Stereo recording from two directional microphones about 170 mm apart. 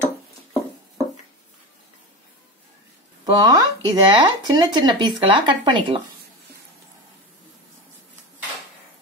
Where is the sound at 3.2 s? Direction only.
25° right (ahead or behind).